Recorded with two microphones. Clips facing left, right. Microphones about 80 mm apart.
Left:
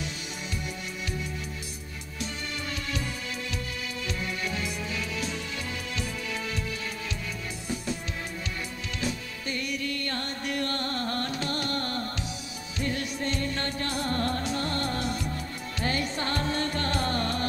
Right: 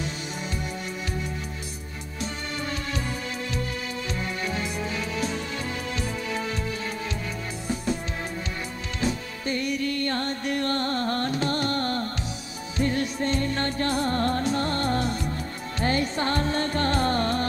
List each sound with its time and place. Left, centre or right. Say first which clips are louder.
4.1 s music: right 2 dB; right
7.6 s music: right 5 dB; right
9.0 s music: right 6 dB; right